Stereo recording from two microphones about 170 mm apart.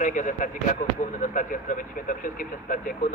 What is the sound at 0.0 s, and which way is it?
Speech, 50° left (ahead or behind).